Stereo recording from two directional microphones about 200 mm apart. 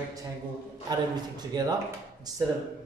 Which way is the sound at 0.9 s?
20° right (ahead or behind).